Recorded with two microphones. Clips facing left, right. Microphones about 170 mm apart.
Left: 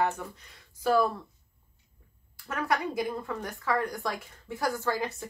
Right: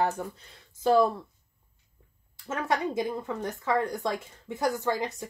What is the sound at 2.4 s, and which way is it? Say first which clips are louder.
Speech: right 1 dB; 20° right (ahead or behind).